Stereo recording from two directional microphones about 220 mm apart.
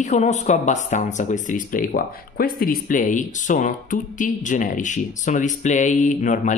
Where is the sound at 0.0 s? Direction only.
30° left (ahead or behind).